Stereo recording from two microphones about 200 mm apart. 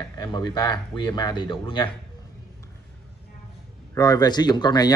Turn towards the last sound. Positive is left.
turn(degrees=20)  # may be behind; listen again after turning